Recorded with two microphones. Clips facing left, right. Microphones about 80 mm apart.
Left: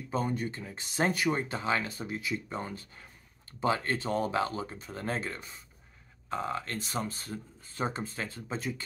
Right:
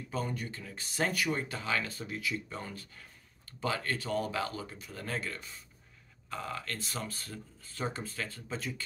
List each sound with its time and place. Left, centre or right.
0.1 s speech: left